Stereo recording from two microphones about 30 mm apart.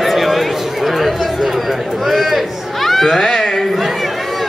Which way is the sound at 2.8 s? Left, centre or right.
Centre.